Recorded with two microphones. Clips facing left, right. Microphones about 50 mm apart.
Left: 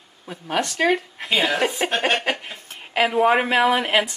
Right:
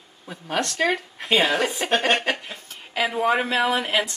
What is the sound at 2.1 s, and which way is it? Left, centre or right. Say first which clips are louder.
Speech: even; centre.